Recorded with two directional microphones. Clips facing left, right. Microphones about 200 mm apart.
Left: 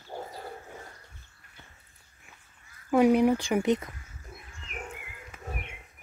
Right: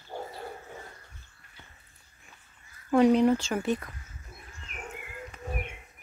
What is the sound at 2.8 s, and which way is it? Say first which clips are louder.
Speech: even; 10° left (ahead or behind).